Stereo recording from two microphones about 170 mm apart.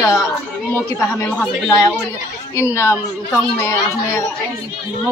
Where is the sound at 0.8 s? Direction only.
20° left (ahead or behind).